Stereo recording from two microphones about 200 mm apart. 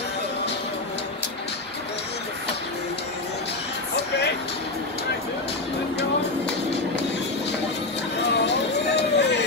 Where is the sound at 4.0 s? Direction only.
55° left (ahead or behind).